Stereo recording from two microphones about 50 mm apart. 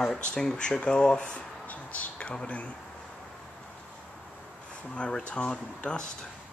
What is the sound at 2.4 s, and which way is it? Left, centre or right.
Speech, left.